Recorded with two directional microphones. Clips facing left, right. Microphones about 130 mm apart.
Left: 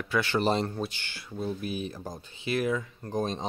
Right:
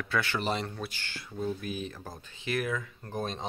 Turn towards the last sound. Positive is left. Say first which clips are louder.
# left 4 dB
turn(degrees=30)  # may be behind; listen again after turning